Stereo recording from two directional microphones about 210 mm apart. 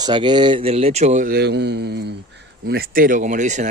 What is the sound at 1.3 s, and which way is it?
Speech, 55° right (ahead or behind).